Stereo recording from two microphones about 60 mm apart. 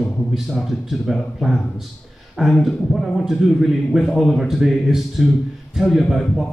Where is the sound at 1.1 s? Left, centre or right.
Centre.